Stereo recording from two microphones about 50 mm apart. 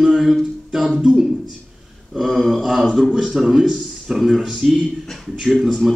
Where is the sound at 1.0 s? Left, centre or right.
Centre.